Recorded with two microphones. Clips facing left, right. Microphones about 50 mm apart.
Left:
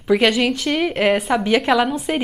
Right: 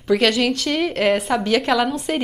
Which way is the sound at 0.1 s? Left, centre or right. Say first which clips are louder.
Left 1 dB; centre.